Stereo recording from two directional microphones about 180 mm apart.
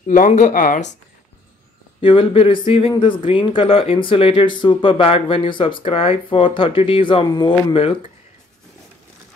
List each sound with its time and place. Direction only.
0.1 s speech: 45° left (ahead or behind)
2.0 s speech: 30° left (ahead or behind)